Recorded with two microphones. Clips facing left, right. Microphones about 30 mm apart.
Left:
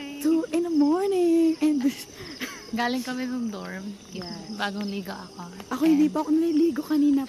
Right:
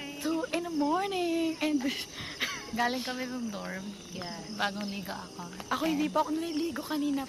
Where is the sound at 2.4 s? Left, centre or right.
Right.